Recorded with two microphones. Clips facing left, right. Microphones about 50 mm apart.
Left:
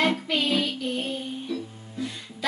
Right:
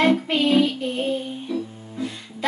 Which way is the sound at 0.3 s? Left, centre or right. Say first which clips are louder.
Right 6 dB; right.